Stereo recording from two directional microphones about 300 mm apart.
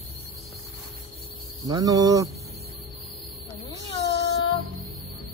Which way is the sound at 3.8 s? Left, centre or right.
Centre.